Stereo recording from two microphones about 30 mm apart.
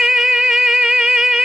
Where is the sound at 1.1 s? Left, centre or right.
Centre.